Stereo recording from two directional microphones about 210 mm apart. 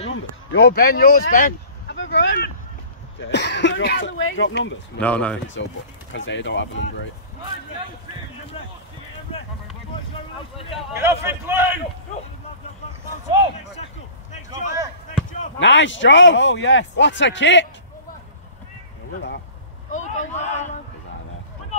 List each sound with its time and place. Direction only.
0.1 s speech: 55° left (ahead or behind)
2.0 s a man's voice: 60° left (ahead or behind)
5.0 s speech: 5° left (ahead or behind)
6.1 s a man's voice: 60° left (ahead or behind)
8.6 s speech: 25° left (ahead or behind)
11.0 s a man's voice: 10° right (ahead or behind)
15.6 s a man's voice: 60° left (ahead or behind)
19.9 s a man's voice: 35° left (ahead or behind)